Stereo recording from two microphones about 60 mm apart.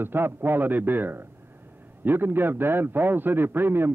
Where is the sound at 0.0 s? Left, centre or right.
Right.